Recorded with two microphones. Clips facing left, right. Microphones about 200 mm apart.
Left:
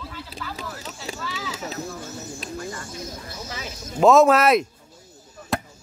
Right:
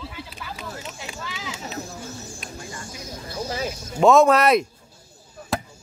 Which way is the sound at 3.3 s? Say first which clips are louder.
Right 7 dB; 30° right (ahead or behind).